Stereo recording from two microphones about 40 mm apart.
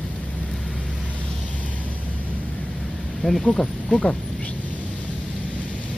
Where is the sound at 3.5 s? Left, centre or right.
Centre.